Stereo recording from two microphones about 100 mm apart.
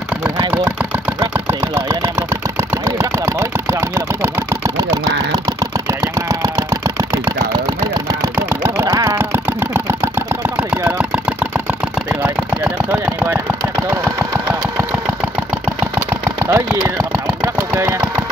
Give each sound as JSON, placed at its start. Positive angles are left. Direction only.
{"t": 1.3, "sound": "vehicle", "side_deg": -25}
{"t": 5.6, "sound": "engine", "side_deg": -35}
{"t": 8.4, "sound": "engine", "side_deg": -20}
{"t": 8.8, "sound": "engine", "side_deg": -30}
{"t": 10.7, "sound": "vehicle", "side_deg": -15}
{"t": 16.4, "sound": "engine", "side_deg": -25}